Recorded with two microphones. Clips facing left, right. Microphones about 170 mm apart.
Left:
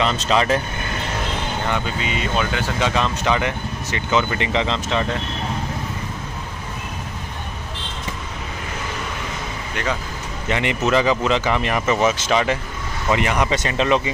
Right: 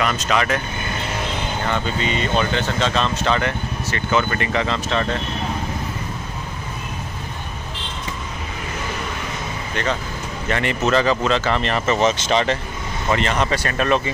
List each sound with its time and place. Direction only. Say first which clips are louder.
0.0 s speech: left 1 dB; 25° left (ahead or behind)
1.7 s speech: right 3 dB; 5° left (ahead or behind)
10.5 s speech: even; 15° left (ahead or behind)